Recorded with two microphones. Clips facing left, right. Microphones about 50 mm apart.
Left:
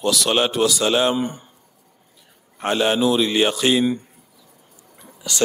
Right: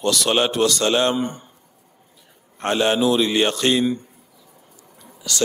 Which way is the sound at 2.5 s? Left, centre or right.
Centre.